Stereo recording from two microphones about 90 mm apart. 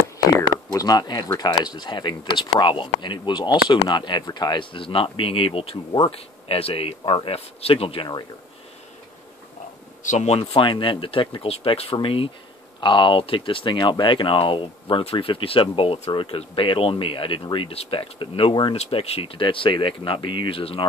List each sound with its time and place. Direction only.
0.7 s speech: 45° left (ahead or behind); by 8.1 s 90° left
10.4 s speech: 70° left (ahead or behind); by 12.3 s 90° left
12.8 s speech: 65° left (ahead or behind); by 18.5 s 85° left
18.5 s speech: 70° left (ahead or behind); by 20.8 s 90° left